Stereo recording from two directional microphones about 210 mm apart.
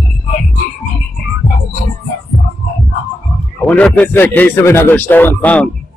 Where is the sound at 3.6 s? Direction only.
5° left (ahead or behind).